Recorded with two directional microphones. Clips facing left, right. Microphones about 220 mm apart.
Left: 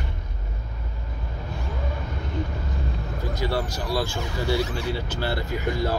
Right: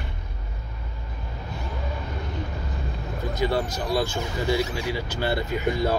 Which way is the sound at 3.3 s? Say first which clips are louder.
Right 3 dB; 20° right (ahead or behind).